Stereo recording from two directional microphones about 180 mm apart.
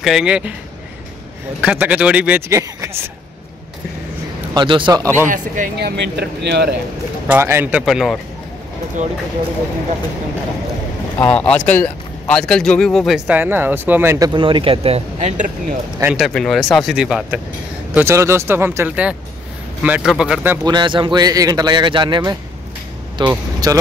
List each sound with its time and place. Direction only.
0.0 s a man's voice: 5° right (ahead or behind)
1.6 s speech: 5° right (ahead or behind)
4.6 s a man's voice: 25° right (ahead or behind)
5.3 s speech: 55° right (ahead or behind)
7.2 s speech: 10° right (ahead or behind)
9.0 s speech: 40° right (ahead or behind)
11.1 s speech: 5° left (ahead or behind); by 15.5 s 45° right (ahead or behind)
16.0 s a man's voice: 5° right (ahead or behind)
20.6 s a man's voice: 25° right (ahead or behind)